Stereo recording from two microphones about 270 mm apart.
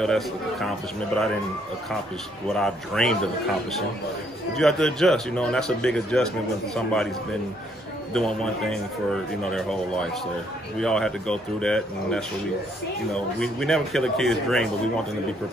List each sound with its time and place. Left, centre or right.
0.0 s speech: centre
2.5 s speech: centre
4.6 s speech: centre
8.1 s speech: centre
13.4 s speech: centre